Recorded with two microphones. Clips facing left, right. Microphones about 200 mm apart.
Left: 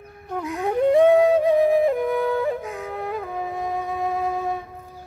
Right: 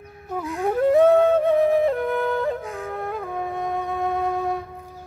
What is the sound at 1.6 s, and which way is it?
Flute, centre (ahead or behind).